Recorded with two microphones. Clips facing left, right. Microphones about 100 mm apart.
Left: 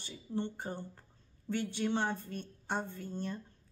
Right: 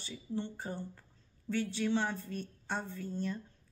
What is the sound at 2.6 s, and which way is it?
Speech, 15° left (ahead or behind).